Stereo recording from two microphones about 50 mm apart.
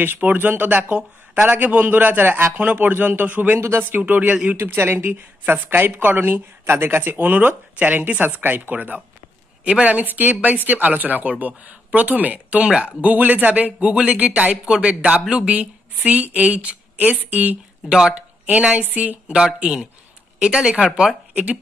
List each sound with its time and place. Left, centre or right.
0.0 s speech: right
0.7 s a woman's voice: right
1.3 s speech: right
2.5 s speech: right
4.6 s a woman's voice: right
17.8 s speech: centre
18.1 s a sound: right
18.8 s speech: right
19.3 s speech: centre
21.3 s a sound: right